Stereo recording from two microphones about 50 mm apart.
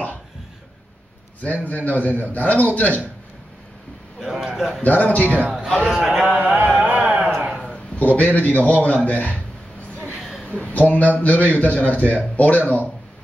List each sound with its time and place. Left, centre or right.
1.4 s a man's voice: left
4.2 s speech: centre
4.8 s a man's voice: left
5.9 s speech: centre
6.4 s a sound: right
7.7 s a man's voice: left
10.1 s a sound: centre
10.4 s a man's voice: left